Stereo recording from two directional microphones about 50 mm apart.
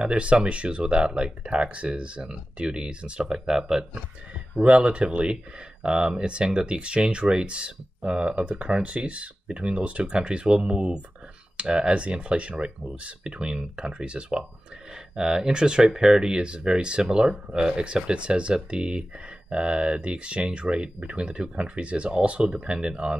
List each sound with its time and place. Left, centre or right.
0.0 s speech: right